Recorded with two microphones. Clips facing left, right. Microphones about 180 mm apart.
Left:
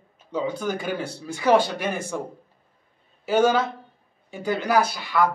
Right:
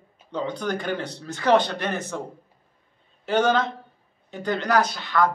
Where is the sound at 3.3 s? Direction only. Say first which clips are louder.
Left 1 dB; 10° left (ahead or behind).